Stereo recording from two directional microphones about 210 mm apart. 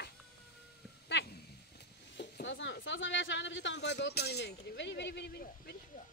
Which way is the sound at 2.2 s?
60° left (ahead or behind).